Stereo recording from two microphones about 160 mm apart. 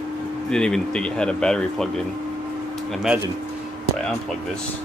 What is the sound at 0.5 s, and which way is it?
Speech, 5° left (ahead or behind).